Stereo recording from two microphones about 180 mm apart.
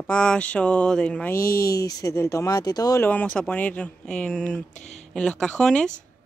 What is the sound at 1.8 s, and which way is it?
Speech, 20° left (ahead or behind).